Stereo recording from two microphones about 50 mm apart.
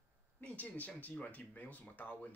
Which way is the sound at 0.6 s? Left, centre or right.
Left.